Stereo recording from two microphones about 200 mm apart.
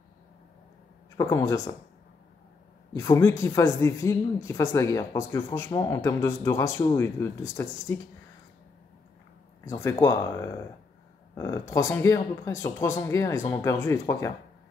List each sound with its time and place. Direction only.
1.1 s speech: 15° left (ahead or behind)
2.9 s speech: 15° left (ahead or behind)
9.7 s speech: 15° left (ahead or behind)